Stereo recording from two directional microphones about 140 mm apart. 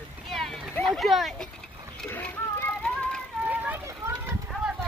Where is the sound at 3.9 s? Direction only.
20° right (ahead or behind).